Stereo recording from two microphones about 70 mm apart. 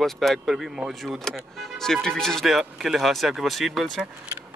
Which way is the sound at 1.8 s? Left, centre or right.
Centre.